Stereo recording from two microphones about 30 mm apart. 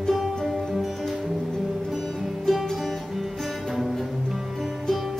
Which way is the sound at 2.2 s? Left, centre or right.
Centre.